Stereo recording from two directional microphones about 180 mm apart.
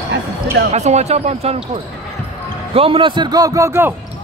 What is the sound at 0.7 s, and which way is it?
Speech, 40° right (ahead or behind).